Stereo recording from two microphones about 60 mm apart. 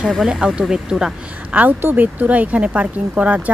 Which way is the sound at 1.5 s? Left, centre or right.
Right.